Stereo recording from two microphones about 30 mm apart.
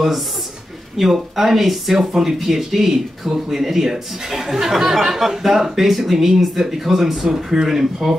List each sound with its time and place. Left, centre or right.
0.9 s speech: centre
2.0 s speech: centre